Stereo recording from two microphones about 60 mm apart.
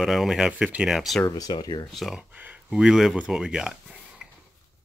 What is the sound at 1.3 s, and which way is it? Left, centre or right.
Speech, left.